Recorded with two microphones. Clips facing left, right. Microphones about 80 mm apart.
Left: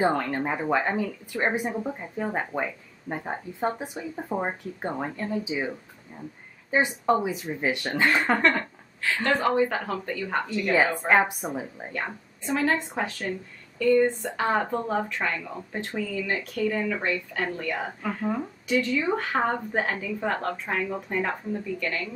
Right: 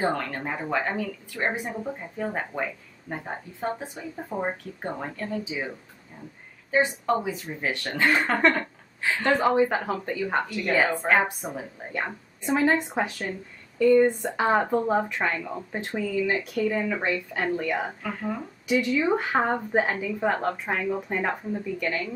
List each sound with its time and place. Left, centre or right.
0.0 s speech: centre
6.7 s speech: centre
9.0 s a woman's voice: centre
11.0 s a woman's voice: centre
11.9 s speech: centre
18.0 s speech: centre
18.7 s speech: centre